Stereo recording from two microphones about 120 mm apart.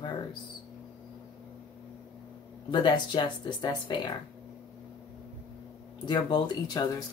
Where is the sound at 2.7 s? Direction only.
40° left (ahead or behind).